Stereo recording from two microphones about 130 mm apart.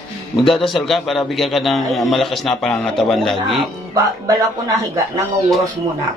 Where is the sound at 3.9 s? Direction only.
30° right (ahead or behind).